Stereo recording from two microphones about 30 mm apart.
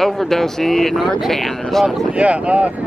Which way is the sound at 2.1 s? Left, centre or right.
Right.